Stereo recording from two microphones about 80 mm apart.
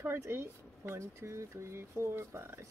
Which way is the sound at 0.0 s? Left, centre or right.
Right.